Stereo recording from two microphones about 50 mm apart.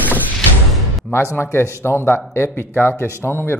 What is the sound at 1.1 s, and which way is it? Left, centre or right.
Speech, left.